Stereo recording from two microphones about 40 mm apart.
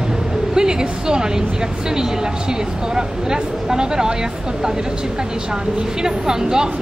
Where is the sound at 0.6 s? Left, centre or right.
Centre.